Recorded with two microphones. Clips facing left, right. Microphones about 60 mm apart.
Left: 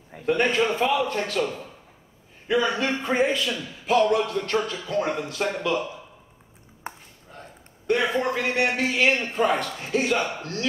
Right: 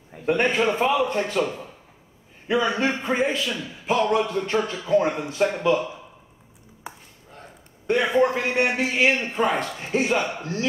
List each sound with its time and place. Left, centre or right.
0.3 s a man's voice: right
2.7 s a man's voice: right
3.1 s a man's voice: centre
6.8 s a sound: left
7.8 s a man's voice: centre